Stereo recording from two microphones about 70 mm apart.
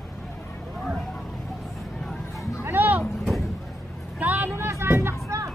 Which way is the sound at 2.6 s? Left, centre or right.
Right.